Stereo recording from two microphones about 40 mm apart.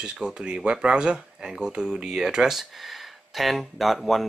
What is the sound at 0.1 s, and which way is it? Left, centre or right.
Speech, centre.